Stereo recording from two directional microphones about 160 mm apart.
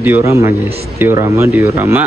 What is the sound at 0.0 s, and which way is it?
A man's voice, 15° right (ahead or behind).